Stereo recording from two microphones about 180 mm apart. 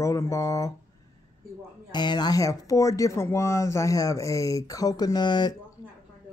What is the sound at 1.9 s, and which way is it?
Speech, 25° left (ahead or behind).